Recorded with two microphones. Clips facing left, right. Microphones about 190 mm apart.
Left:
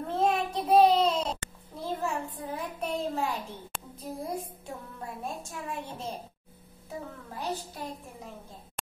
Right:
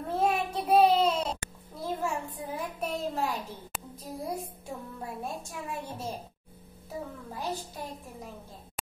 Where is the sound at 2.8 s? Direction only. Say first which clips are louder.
Left 1 dB; centre (ahead or behind).